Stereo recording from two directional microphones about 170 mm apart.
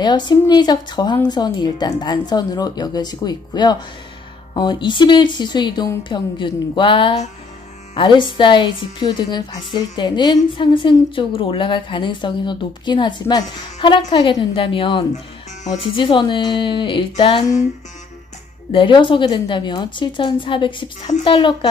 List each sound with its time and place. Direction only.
0.0 s speech: 25° left (ahead or behind)
18.7 s speech: 30° left (ahead or behind)